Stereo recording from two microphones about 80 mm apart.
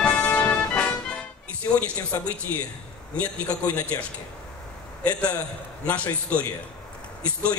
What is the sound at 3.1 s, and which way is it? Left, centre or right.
Speech, centre.